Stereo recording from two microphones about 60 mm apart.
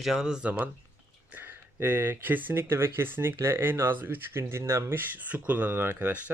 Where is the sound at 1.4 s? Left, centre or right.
Right.